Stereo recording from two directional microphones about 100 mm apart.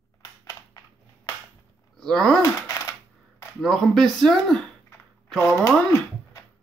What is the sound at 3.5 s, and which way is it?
Speech, centre (ahead or behind).